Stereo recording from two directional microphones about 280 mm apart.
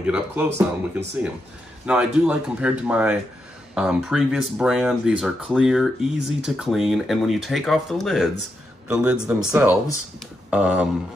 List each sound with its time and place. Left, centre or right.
0.0 s speech: centre